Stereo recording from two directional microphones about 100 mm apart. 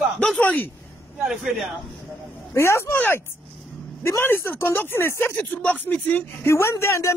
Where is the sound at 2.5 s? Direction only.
30° left (ahead or behind).